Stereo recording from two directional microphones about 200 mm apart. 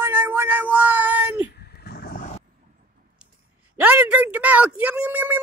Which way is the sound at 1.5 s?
50° left (ahead or behind).